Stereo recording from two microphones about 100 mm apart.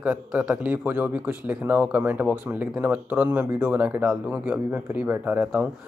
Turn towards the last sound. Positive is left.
turn(degrees=-15)  # may be behind; listen again after turning